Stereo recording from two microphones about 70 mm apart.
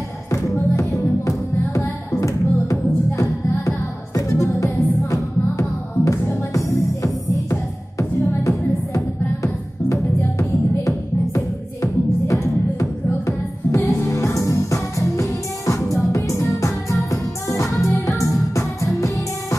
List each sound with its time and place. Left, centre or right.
0.3 s music: left